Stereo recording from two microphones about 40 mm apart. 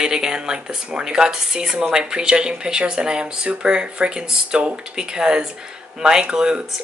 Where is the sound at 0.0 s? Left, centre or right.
Centre.